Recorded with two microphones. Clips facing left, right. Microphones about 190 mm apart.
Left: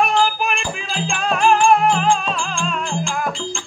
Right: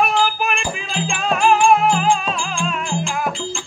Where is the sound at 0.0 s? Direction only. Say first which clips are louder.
Left 1 dB; centre (ahead or behind).